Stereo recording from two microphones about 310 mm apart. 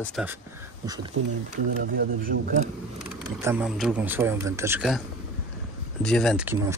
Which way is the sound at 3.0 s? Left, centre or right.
Centre.